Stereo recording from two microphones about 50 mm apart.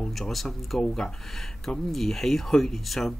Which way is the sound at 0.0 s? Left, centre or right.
Centre.